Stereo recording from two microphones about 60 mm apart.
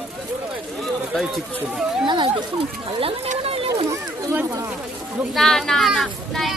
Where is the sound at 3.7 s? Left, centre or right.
Right.